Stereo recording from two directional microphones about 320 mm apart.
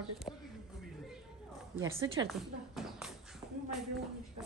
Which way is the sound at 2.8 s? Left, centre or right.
Centre.